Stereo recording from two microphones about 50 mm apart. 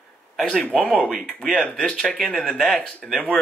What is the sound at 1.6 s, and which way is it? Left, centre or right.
Speech, left.